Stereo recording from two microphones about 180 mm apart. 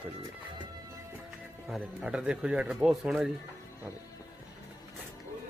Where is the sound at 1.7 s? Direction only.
5° right (ahead or behind).